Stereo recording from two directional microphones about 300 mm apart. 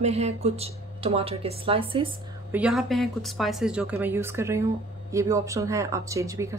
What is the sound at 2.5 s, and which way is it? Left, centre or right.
Speech, centre.